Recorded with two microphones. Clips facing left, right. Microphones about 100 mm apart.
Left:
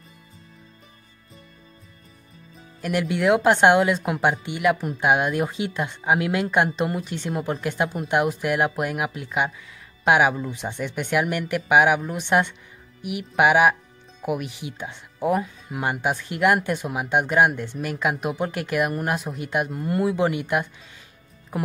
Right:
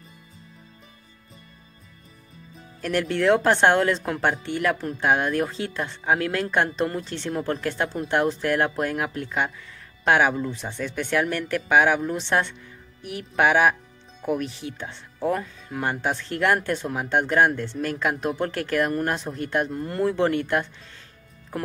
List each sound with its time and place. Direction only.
2.5 s speech: 10° left (ahead or behind)